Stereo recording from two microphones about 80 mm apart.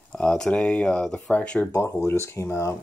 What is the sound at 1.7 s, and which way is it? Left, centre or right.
Speech, left.